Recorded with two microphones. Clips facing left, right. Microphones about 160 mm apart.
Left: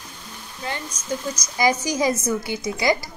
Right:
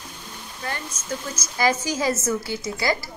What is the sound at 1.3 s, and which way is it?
A woman's voice, 15° left (ahead or behind).